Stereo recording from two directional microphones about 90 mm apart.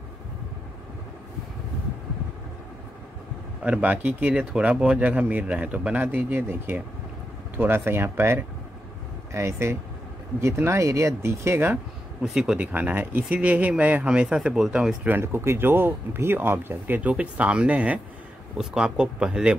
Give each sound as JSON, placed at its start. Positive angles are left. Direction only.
{"t": 3.6, "sound": "speech", "side_deg": -15}
{"t": 12.2, "sound": "speech", "side_deg": -5}
{"t": 12.7, "sound": "speech", "side_deg": -20}
{"t": 15.0, "sound": "speech", "side_deg": -25}